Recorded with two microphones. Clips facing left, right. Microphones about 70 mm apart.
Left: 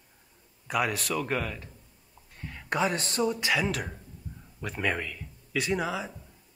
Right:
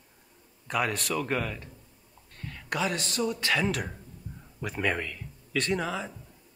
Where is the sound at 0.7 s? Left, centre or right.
Centre.